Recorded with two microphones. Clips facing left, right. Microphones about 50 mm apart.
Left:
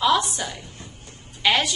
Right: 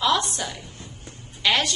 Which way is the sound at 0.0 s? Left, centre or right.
Centre.